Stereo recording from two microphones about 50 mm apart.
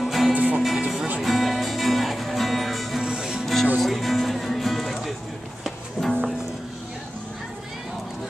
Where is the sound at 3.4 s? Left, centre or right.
Centre.